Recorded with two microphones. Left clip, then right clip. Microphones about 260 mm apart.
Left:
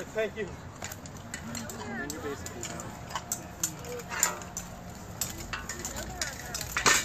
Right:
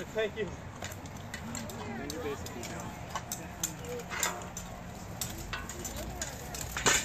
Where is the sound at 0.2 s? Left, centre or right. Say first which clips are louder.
Left 1 dB; centre.